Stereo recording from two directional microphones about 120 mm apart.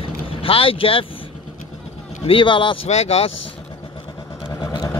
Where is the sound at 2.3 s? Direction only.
45° left (ahead or behind).